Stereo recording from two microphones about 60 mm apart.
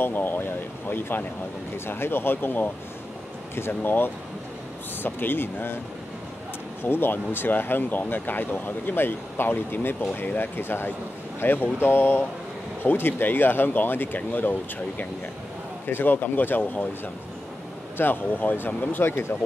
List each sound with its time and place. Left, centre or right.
0.0 s speech: left
6.8 s speech: left
17.9 s speech: left